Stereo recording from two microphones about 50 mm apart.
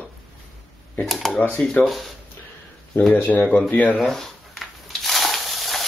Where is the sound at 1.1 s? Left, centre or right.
Centre.